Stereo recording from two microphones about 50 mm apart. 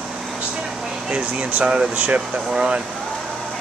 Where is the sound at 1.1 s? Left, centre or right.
Right.